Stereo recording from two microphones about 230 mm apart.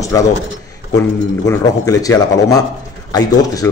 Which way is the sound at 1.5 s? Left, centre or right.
Centre.